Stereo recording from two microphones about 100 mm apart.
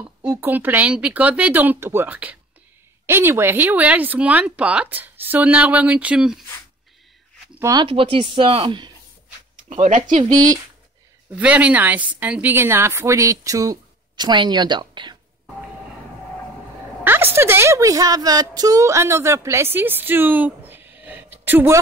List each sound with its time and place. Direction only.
0.2 s speech: 20° right (ahead or behind)
7.8 s speech: 65° right (ahead or behind)
11.3 s speech: 15° right (ahead or behind); by 15.1 s 50° right (ahead or behind)
17.0 s a woman's voice: 20° right (ahead or behind)